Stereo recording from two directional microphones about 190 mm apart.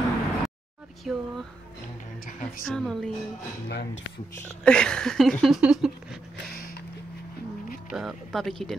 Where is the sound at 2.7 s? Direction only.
5° left (ahead or behind).